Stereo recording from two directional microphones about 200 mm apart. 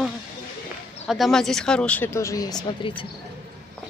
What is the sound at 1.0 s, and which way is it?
Speech, centre (ahead or behind).